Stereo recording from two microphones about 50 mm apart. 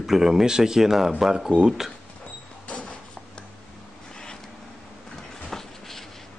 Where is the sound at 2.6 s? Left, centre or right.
Left.